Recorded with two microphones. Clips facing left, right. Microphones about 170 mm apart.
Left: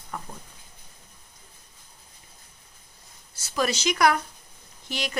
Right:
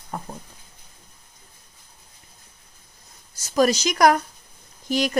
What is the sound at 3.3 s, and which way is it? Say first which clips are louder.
Speech: right 7 dB; 40° right (ahead or behind).